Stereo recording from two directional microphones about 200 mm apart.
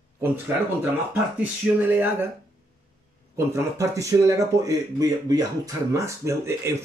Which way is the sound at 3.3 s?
15° right (ahead or behind).